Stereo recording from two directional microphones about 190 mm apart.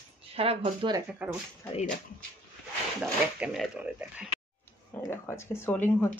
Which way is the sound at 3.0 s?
5° right (ahead or behind).